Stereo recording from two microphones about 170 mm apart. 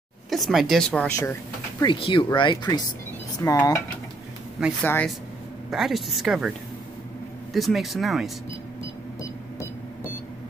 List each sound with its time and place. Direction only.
0.3 s speech: centre (ahead or behind)
1.8 s speech: 30° left (ahead or behind)
4.8 s speech: 10° left (ahead or behind)
5.7 s speech: centre (ahead or behind)
7.5 s speech: centre (ahead or behind)